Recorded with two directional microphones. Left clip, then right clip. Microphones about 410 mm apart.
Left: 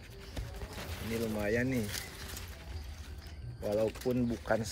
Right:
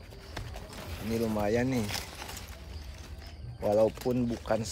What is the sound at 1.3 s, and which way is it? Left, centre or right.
Speech, centre.